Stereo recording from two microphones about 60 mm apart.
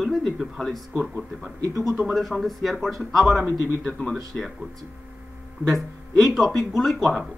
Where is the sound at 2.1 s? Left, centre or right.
Centre.